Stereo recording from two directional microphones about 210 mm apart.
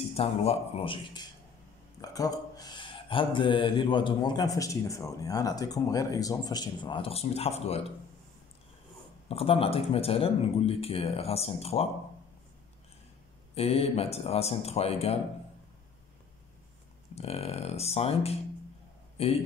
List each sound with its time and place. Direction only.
0.1 s speech: 30° left (ahead or behind)
9.3 s speech: 25° left (ahead or behind)
13.6 s speech: 30° left (ahead or behind)
17.1 s a man's voice: 30° left (ahead or behind)